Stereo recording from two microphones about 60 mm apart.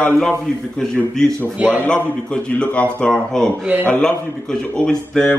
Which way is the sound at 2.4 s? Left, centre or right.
Centre.